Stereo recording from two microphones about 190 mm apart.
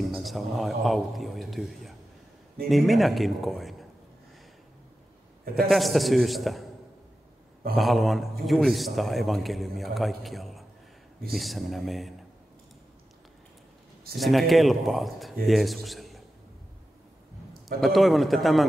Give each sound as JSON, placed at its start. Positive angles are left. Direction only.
{"t": 0.1, "sound": "a man's voice", "side_deg": 0}
{"t": 5.4, "sound": "a man's voice", "side_deg": -50}
{"t": 5.7, "sound": "a man's voice", "side_deg": 0}
{"t": 7.7, "sound": "a man's voice", "side_deg": 0}
{"t": 14.1, "sound": "a man's voice", "side_deg": 0}
{"t": 17.8, "sound": "a man's voice", "side_deg": 0}